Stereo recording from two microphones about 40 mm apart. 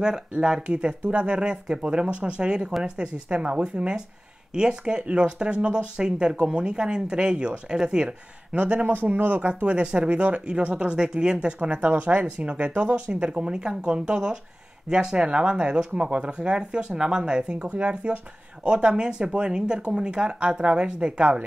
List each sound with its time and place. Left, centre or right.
0.4 s speech: centre
8.5 s speech: right
9.2 s speech: right
9.5 s speech: right